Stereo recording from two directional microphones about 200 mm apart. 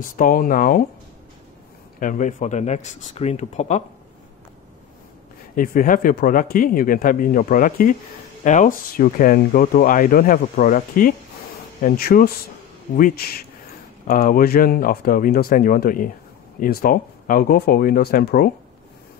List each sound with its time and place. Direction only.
0.1 s speech: 45° left (ahead or behind)
2.0 s speech: 40° left (ahead or behind)
5.6 s speech: 45° left (ahead or behind)